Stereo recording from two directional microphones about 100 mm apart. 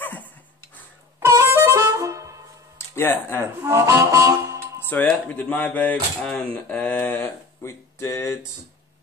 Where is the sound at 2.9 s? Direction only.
20° left (ahead or behind).